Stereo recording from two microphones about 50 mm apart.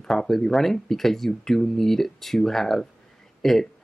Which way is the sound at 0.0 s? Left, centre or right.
Centre.